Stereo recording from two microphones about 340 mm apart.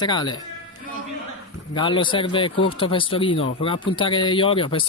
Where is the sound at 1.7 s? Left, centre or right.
Centre.